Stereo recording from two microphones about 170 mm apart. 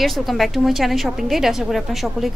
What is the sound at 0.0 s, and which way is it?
Speech, centre (ahead or behind).